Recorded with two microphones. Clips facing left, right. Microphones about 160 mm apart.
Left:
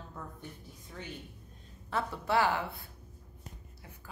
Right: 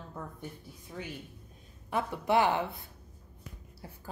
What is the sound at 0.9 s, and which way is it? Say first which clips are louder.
A woman's voice: right 3 dB; 10° right (ahead or behind).